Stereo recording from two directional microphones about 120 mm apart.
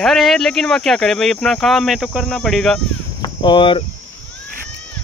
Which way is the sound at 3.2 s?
40° left (ahead or behind).